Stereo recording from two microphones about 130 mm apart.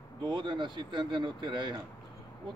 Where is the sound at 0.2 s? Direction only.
35° right (ahead or behind).